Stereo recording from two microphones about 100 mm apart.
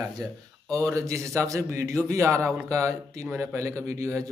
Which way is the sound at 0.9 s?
30° right (ahead or behind).